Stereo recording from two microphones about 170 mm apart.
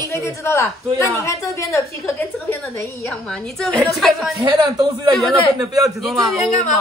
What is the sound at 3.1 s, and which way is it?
A woman's voice, 5° left (ahead or behind).